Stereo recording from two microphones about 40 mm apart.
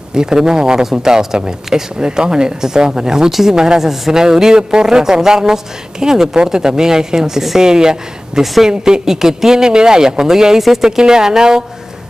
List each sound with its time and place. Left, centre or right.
0.1 s a man's voice: centre
3.3 s speech: centre
3.5 s a man's voice: centre